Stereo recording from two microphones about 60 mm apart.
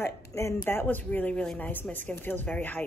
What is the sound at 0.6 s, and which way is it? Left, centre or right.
Speech, left.